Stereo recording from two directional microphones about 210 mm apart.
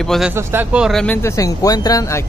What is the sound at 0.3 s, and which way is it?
Speech, 10° right (ahead or behind).